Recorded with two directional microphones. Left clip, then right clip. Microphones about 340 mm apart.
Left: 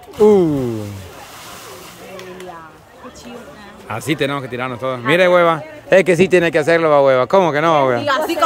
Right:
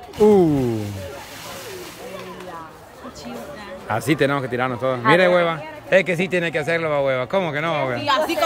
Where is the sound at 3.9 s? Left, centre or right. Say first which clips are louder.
Even; centre.